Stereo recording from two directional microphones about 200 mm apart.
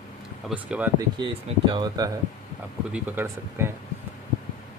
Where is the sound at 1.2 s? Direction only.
25° right (ahead or behind).